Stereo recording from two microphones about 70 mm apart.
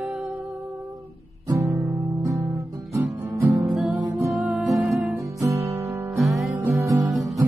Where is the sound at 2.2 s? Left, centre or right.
Right.